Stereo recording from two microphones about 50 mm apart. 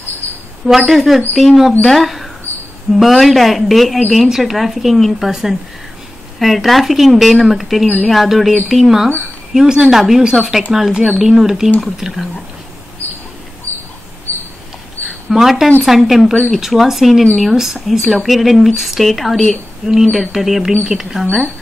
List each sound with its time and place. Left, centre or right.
0.7 s speech: centre
13.7 s a sound: right
14.3 s mouse: left
15.2 s speech: centre